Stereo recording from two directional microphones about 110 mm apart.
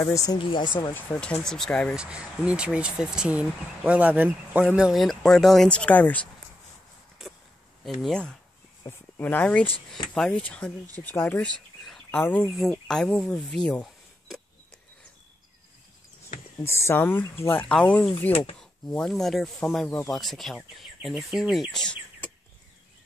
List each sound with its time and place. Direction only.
0.0 s speech: 30° left (ahead or behind)
0.4 s speech: 50° left (ahead or behind)
0.9 s speech: 15° left (ahead or behind)
1.4 s speech: 5° left (ahead or behind)
2.0 s speech: 10° right (ahead or behind); by 6.2 s 15° left (ahead or behind)
7.2 s a sound: centre (ahead or behind)
7.8 s speech: 5° left (ahead or behind)
8.8 s speech: 20° left (ahead or behind)
11.4 s bird: 5° left (ahead or behind)
12.1 s speech: 15° left (ahead or behind)
12.8 s speech: 5° left (ahead or behind)
16.5 s speech: 25° left (ahead or behind)
17.6 s speech: 10° left (ahead or behind)